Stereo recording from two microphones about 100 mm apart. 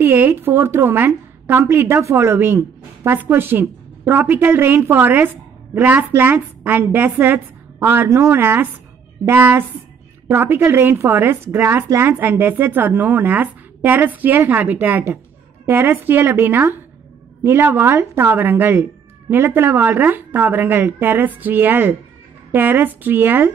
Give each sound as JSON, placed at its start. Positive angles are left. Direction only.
{"t": 0.0, "sound": "a woman's voice", "side_deg": -25}